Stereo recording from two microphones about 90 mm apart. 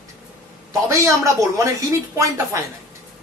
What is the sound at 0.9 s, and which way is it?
A man's voice, 35° right (ahead or behind).